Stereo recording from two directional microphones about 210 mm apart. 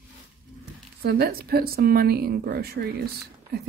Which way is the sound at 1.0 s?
50° right (ahead or behind).